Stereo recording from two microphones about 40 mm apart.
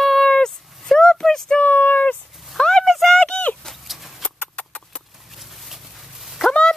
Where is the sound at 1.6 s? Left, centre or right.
Left.